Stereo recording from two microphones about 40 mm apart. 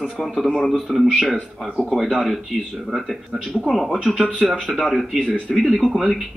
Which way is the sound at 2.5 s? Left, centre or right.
Centre.